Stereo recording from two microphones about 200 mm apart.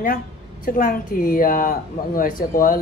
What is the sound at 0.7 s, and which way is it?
A woman's voice, 45° left (ahead or behind).